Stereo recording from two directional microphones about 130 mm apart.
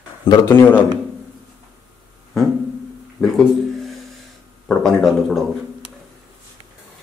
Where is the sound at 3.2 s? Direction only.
5° left (ahead or behind).